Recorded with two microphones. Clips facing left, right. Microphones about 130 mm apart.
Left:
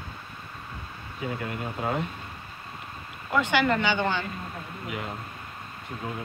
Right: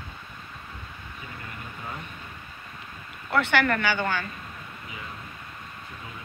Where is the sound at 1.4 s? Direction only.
70° left (ahead or behind).